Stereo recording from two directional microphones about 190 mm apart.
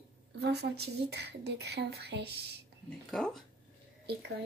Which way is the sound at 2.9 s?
5° left (ahead or behind).